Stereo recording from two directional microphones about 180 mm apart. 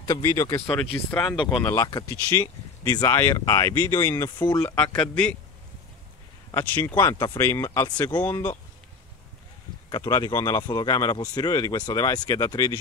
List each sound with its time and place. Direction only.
0.0 s speech: 20° left (ahead or behind)
6.5 s speech: 10° left (ahead or behind)
9.8 s speech: 20° left (ahead or behind)